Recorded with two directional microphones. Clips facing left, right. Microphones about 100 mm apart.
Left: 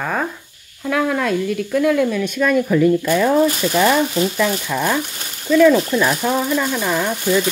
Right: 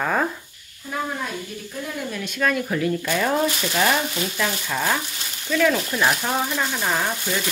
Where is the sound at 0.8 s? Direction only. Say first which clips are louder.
Left 9 dB; 90° left.